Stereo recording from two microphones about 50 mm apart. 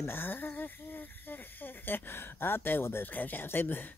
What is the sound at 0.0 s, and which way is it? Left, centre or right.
Speech, left.